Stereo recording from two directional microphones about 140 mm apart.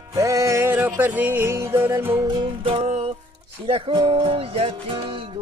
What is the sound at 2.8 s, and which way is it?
Music, 50° right (ahead or behind).